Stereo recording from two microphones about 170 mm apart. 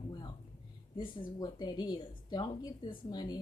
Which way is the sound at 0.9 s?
30° left (ahead or behind).